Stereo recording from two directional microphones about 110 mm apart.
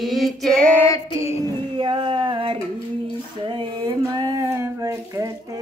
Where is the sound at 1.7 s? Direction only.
50° right (ahead or behind).